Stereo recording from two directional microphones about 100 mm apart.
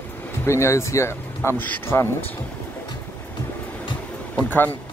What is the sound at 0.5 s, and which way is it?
Speech, 30° left (ahead or behind).